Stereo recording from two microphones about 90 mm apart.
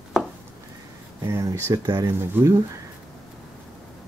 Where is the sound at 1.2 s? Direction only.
35° right (ahead or behind).